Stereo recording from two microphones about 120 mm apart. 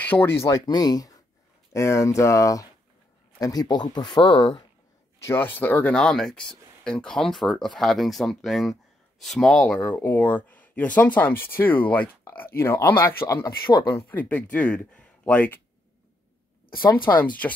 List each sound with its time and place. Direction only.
0.0 s speech: 15° left (ahead or behind)
0.7 s speech: 35° left (ahead or behind)
5.2 s speech: 20° left (ahead or behind)
17.1 s speech: 15° left (ahead or behind)